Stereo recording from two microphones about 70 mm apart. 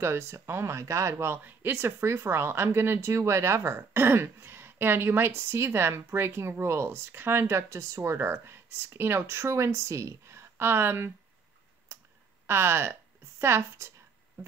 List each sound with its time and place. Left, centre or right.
0.0 s speech: right
1.1 s speech: right
12.4 s speech: right